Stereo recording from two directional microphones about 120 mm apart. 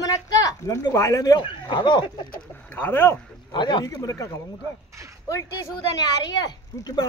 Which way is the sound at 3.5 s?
40° left (ahead or behind).